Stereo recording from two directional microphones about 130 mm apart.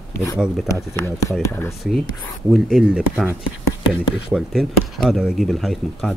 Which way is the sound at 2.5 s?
5° right (ahead or behind).